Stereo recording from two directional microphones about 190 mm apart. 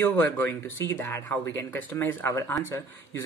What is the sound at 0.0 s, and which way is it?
Speech, 10° left (ahead or behind).